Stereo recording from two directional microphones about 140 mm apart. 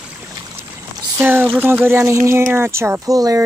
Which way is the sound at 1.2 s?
15° right (ahead or behind).